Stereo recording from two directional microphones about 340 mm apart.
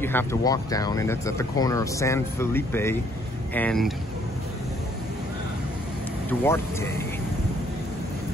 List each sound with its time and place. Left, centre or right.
0.0 s speech: centre
6.4 s speech: centre